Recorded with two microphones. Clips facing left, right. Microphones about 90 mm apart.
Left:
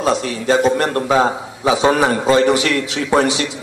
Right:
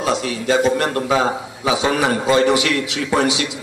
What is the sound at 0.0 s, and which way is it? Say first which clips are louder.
A man's voice: left 2 dB; 40° left (ahead or behind).